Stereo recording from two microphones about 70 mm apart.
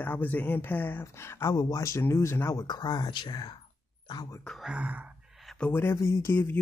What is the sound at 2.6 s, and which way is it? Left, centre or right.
Speech, left.